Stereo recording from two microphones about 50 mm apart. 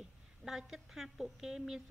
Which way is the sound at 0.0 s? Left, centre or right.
Centre.